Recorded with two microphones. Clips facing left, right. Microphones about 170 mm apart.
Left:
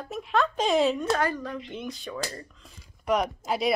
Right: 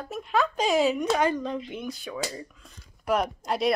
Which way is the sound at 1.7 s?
5° right (ahead or behind).